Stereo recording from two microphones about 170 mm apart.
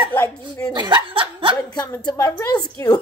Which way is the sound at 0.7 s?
25° right (ahead or behind).